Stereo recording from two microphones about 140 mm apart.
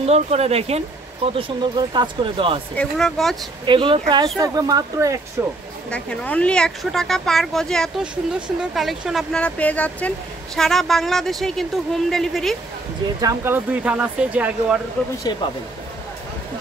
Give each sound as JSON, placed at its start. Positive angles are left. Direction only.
{"t": 0.0, "sound": "speech", "side_deg": -50}
{"t": 1.8, "sound": "speech", "side_deg": -35}
{"t": 2.7, "sound": "speech", "side_deg": 5}
{"t": 3.6, "sound": "speech", "side_deg": -35}
{"t": 5.9, "sound": "speech", "side_deg": 10}
{"t": 9.4, "sound": "speech", "side_deg": 10}
{"t": 13.2, "sound": "speech", "side_deg": -15}
{"t": 15.3, "sound": "speech", "side_deg": 30}